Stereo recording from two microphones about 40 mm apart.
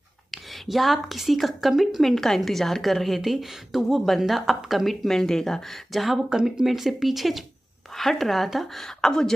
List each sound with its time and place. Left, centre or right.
0.3 s a woman's voice: centre
2.1 s a woman's voice: centre
5.0 s speech: centre
6.3 s speech: centre
6.6 s a woman's voice: centre